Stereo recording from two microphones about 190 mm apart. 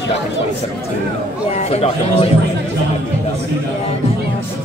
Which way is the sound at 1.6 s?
35° left (ahead or behind).